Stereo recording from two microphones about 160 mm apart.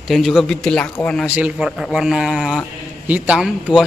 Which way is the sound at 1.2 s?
10° right (ahead or behind).